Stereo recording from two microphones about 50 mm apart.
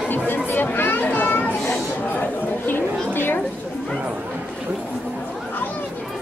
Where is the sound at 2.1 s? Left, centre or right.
Left.